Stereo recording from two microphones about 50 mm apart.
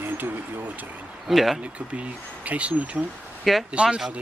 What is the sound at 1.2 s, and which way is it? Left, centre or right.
Speech, centre.